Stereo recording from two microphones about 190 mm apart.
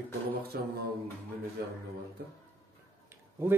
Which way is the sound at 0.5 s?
55° right (ahead or behind).